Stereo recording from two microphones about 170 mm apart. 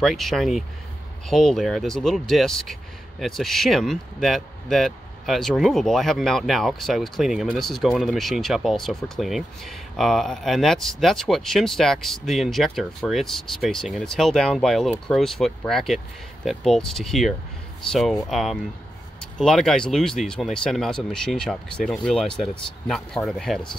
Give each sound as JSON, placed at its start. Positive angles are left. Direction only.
{"t": 0.0, "sound": "speech", "side_deg": 0}